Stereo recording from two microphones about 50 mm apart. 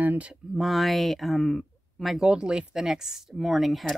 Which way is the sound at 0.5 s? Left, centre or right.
Centre.